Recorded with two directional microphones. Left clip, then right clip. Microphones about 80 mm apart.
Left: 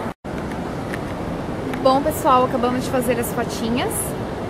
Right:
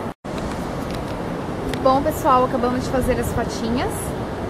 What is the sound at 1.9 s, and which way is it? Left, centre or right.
Speech, left.